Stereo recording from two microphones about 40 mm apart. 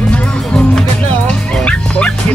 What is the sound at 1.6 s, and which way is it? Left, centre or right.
Music, left.